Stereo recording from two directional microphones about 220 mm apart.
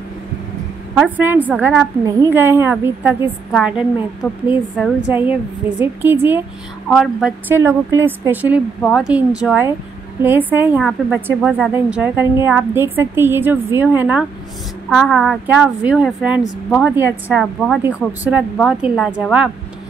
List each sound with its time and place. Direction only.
0.9 s a woman's voice: 5° right (ahead or behind)